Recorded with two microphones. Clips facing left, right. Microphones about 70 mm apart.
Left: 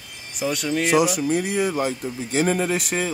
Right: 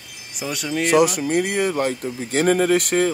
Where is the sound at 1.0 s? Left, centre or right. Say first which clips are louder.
Right 2 dB; right.